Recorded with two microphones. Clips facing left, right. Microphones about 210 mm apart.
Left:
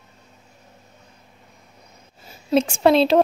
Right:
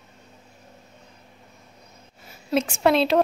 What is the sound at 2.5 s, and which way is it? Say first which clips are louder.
Speech: left 4 dB; 30° left (ahead or behind).